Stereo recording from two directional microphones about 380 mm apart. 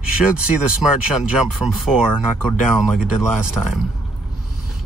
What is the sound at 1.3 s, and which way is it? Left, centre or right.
A man's voice, centre.